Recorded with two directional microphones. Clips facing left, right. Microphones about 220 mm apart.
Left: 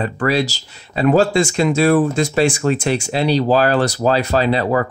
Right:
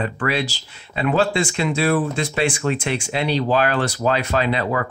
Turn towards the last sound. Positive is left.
turn(degrees=35)  # may be behind; listen again after turning